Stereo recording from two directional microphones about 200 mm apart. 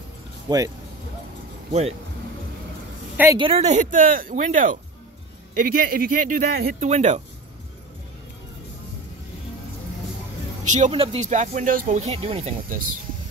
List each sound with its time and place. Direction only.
0.5 s speech: 20° right (ahead or behind)
1.7 s speech: 30° right (ahead or behind)
3.3 s speech: 30° right (ahead or behind)
10.7 s speech: 35° right (ahead or behind)
12.1 s speech: 30° right (ahead or behind)